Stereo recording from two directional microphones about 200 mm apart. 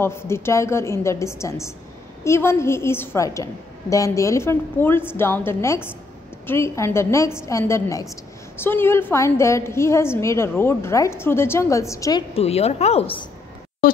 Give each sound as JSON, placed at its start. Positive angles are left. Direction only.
{"t": 0.0, "sound": "a woman's voice", "side_deg": 10}